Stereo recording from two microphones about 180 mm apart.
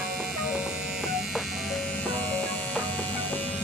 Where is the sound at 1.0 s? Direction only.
Centre (ahead or behind).